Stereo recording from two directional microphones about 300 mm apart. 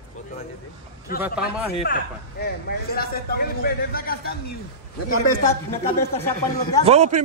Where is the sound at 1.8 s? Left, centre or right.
Left.